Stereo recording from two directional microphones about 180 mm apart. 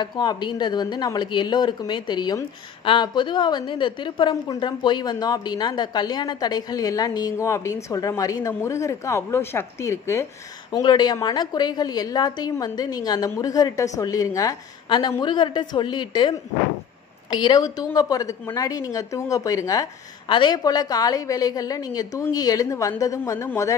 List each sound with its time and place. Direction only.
0.0 s speech: 25° left (ahead or behind)